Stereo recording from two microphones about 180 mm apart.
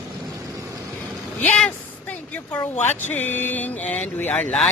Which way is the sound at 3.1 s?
10° left (ahead or behind).